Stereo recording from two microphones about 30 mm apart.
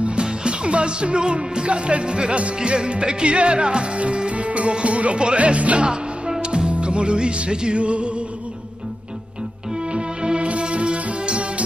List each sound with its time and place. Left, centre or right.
0.0 s music: right
6.4 s music: right
9.9 s music: right